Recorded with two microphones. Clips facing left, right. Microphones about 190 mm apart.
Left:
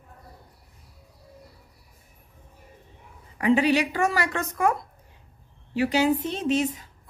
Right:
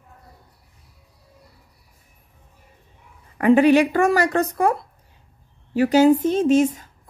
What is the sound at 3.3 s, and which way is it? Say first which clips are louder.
A woman's voice: right 7 dB; 55° right (ahead or behind).